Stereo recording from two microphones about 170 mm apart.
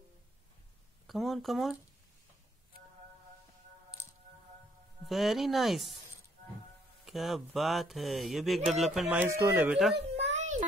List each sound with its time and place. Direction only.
1.0 s speech: centre (ahead or behind)
5.0 s speech: centre (ahead or behind)
7.1 s speech: centre (ahead or behind)
9.9 s a sound: 40° right (ahead or behind)